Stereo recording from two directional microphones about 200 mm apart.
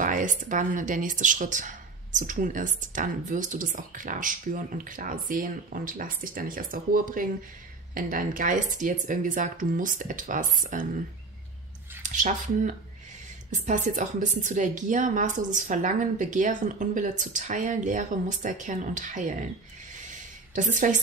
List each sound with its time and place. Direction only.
0.0 s speech: 40° right (ahead or behind)
12.0 s speech: 40° right (ahead or behind)
20.1 s a sound: 40° right (ahead or behind)